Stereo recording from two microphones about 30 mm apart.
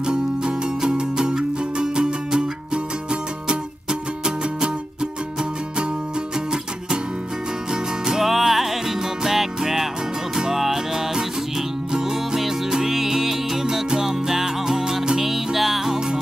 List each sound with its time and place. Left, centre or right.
0.0 s music: right
8.2 s music: centre